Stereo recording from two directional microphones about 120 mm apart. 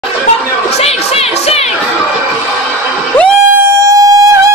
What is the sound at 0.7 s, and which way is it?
Music, 60° left (ahead or behind).